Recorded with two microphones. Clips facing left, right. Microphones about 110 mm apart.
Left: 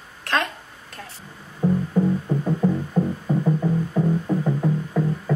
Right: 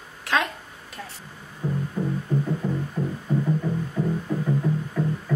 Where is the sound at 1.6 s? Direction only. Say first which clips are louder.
Left 7 dB; 30° left (ahead or behind).